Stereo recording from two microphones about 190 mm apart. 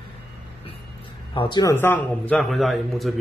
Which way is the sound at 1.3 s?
25° left (ahead or behind).